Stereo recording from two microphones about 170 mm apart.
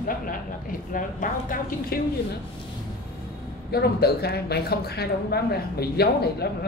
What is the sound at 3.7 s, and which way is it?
Speech, 70° left (ahead or behind).